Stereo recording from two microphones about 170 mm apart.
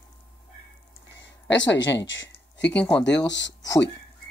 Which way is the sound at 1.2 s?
90° left.